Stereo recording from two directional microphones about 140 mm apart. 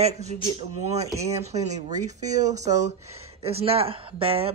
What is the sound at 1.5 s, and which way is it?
Speech, 50° right (ahead or behind).